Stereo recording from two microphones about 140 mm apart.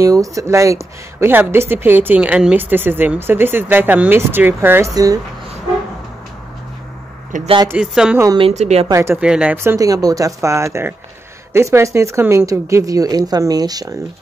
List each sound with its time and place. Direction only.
0.0 s a woman's voice: 25° right (ahead or behind)
7.3 s speech: 65° right (ahead or behind)
7.7 s a sound: 5° right (ahead or behind)
8.4 s speech: 50° right (ahead or behind)
8.9 s a woman's voice: 20° right (ahead or behind)
9.2 s speech: 5° right (ahead or behind)
9.6 s a woman's voice: 20° right (ahead or behind)